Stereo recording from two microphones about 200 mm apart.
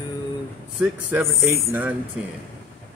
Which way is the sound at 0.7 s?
5° right (ahead or behind).